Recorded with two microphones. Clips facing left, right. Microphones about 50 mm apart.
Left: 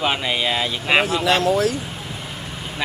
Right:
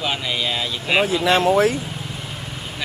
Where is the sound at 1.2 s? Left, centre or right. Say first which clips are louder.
Right 2 dB; right.